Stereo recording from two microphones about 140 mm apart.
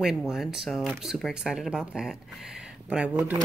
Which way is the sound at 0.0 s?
5° right (ahead or behind).